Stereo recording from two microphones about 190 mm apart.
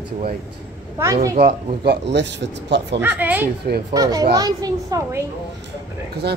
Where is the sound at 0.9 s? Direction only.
15° right (ahead or behind).